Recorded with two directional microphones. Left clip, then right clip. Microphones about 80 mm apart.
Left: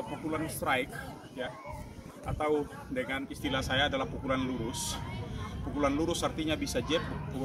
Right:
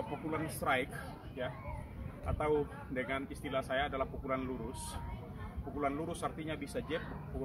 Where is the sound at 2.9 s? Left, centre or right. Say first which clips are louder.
Left 3 dB; right.